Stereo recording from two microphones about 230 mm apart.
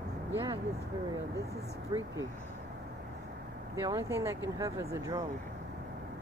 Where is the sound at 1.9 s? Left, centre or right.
Centre.